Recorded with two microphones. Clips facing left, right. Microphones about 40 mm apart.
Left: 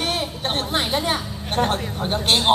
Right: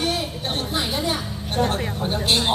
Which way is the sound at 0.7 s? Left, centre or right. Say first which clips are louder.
Left 2 dB; left.